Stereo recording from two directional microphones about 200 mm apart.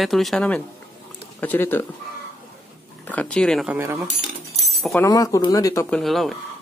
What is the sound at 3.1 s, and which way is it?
Speech, 5° left (ahead or behind).